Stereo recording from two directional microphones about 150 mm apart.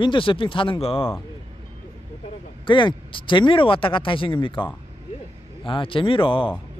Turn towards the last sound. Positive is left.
turn(degrees=35)  # may be behind; listen again after turning